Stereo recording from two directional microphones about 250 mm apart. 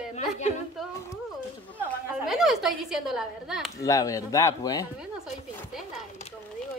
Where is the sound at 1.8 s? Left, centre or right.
Centre.